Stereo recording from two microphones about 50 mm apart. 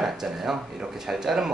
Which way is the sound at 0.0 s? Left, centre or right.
Centre.